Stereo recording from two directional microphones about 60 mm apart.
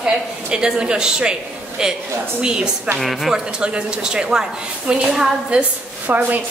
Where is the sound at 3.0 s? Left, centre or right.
Centre.